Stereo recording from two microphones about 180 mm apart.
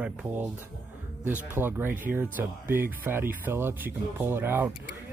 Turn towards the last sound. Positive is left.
turn(degrees=-10)  # may be behind; listen again after turning